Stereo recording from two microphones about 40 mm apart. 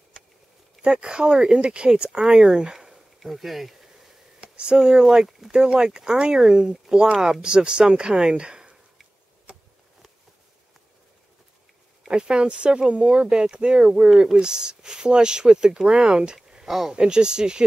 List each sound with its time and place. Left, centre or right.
0.8 s speech: right
3.2 s a sound: centre
4.4 s speech: right
12.1 s speech: right
16.3 s a sound: centre
16.9 s speech: right